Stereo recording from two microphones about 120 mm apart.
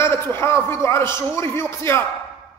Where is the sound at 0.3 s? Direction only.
20° left (ahead or behind).